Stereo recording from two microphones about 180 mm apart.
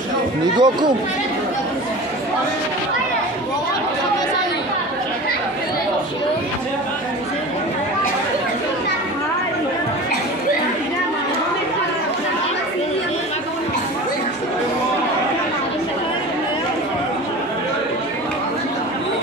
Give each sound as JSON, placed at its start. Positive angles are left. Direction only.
{"t": 0.6, "sound": "speech", "side_deg": -25}